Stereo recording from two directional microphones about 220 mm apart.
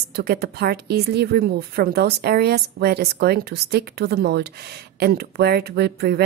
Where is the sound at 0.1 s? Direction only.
45° right (ahead or behind).